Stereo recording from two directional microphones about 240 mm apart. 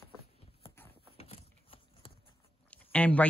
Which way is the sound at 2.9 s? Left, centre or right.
Centre.